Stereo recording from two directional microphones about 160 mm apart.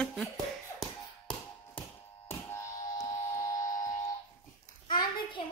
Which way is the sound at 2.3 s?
20° left (ahead or behind).